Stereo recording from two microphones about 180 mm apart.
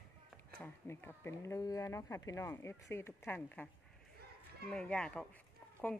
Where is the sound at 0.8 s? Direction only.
15° left (ahead or behind).